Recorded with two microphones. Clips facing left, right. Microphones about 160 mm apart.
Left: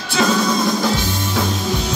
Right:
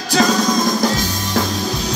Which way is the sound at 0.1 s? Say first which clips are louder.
Right 2 dB; 40° right (ahead or behind).